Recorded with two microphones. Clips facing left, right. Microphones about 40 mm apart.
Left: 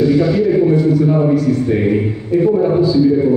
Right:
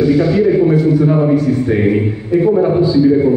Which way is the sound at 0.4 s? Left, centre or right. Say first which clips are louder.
Right 1 dB; centre.